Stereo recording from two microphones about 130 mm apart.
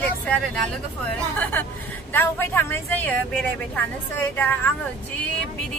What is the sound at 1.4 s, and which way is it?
A woman's voice, 15° left (ahead or behind).